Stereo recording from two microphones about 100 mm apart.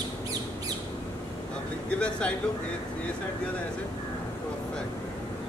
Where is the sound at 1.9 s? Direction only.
10° left (ahead or behind).